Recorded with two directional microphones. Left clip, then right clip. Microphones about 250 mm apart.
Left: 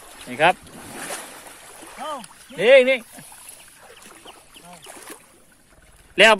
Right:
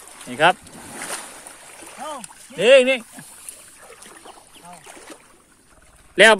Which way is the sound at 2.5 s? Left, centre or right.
Centre.